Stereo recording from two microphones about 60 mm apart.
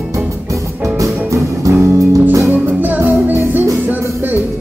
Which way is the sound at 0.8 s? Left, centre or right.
Right.